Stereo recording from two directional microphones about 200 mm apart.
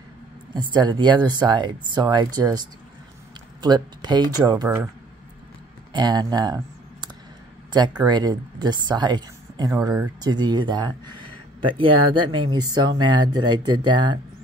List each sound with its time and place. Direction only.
0.7 s speech: 20° right (ahead or behind)
3.6 s speech: 20° right (ahead or behind)
5.9 s speech: 20° right (ahead or behind)